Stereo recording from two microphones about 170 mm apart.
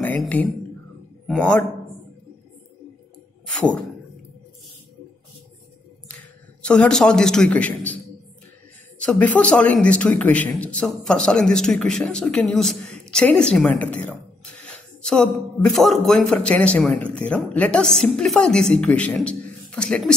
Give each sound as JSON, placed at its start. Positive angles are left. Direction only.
{"t": 0.2, "sound": "a man's voice", "side_deg": 10}
{"t": 3.4, "sound": "a sound", "side_deg": 5}
{"t": 6.6, "sound": "speech", "side_deg": 5}
{"t": 9.0, "sound": "a man's voice", "side_deg": 10}
{"t": 13.0, "sound": "a sound", "side_deg": 5}
{"t": 15.7, "sound": "a man's voice", "side_deg": 0}